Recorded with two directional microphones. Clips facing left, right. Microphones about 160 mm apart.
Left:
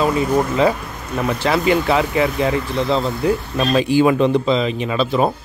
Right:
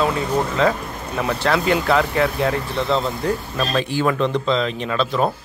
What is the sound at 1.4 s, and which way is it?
A man's voice, 5° left (ahead or behind).